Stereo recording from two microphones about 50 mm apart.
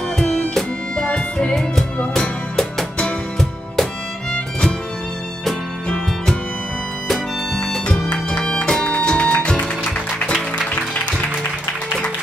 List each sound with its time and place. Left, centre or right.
0.2 s music: centre
4.3 s music: centre
7.1 s music: centre
8.3 s music: left